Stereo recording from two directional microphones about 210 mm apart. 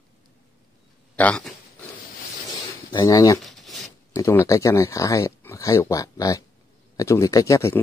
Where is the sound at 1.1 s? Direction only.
5° left (ahead or behind).